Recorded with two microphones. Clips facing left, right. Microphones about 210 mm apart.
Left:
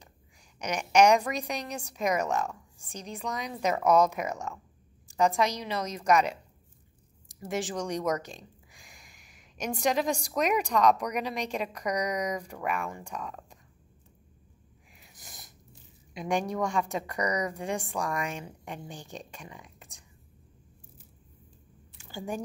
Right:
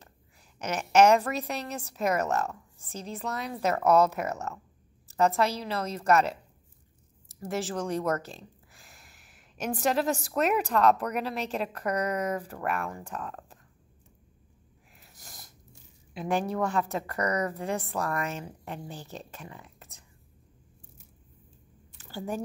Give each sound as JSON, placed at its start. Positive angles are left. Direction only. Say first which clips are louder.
{"t": 0.6, "sound": "a woman's voice", "louder": "right 1 dB", "side_deg": 15}
{"t": 2.2, "sound": "speech", "louder": "right 1 dB", "side_deg": -5}
{"t": 2.9, "sound": "a woman's voice", "louder": "right 1 dB", "side_deg": 15}
{"t": 7.3, "sound": "a woman's voice", "louder": "right 1 dB", "side_deg": 0}
{"t": 11.9, "sound": "a woman's voice", "louder": "right 1 dB", "side_deg": 15}
{"t": 12.4, "sound": "a woman's voice", "louder": "right 1 dB", "side_deg": -5}
{"t": 15.1, "sound": "sneeze", "louder": "even", "side_deg": 0}
{"t": 16.1, "sound": "a woman's voice", "louder": "right 1 dB", "side_deg": -5}
{"t": 17.2, "sound": "a woman's voice", "louder": "right 1 dB", "side_deg": 15}
{"t": 17.7, "sound": "a woman's voice", "louder": "right 1 dB", "side_deg": -5}
{"t": 18.4, "sound": "a woman's voice", "louder": "right 1 dB", "side_deg": 20}
{"t": 18.9, "sound": "a woman's voice", "louder": "right 1 dB", "side_deg": -5}
{"t": 19.3, "sound": "a woman's voice", "louder": "right 1 dB", "side_deg": 15}